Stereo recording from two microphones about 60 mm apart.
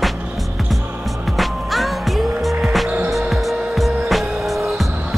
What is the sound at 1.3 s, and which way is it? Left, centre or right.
Music, centre.